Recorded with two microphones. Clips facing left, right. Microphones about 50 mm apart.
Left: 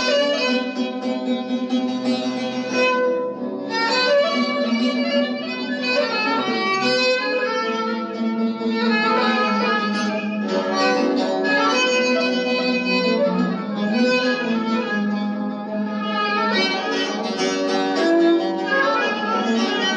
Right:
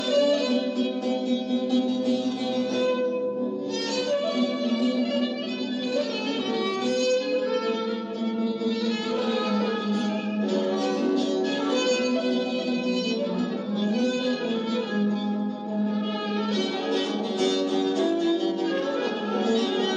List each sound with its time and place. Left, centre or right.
0.1 s music: left
2.8 s music: left
6.9 s music: left
9.0 s music: left
10.5 s music: left
13.9 s violin: left
17.4 s music: left